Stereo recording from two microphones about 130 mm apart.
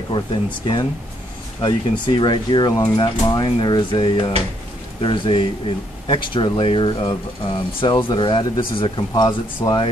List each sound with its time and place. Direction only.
0.1 s speech: 35° left (ahead or behind)